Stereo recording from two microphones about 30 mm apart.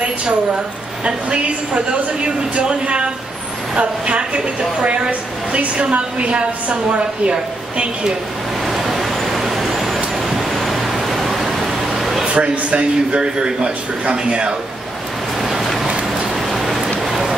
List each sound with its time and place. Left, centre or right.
1.0 s a woman's voice: right
8.6 s vehicle: centre
12.4 s a woman's voice: right
13.2 s a woman's voice: right
16.6 s rain: centre
17.0 s rain on surface: centre